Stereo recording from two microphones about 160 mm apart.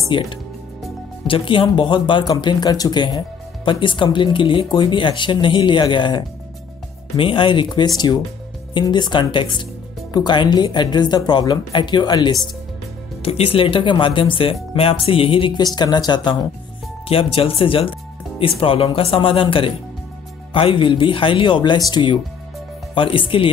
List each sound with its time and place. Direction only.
1.2 s speech: 35° left (ahead or behind)
13.2 s speech: 35° left (ahead or behind)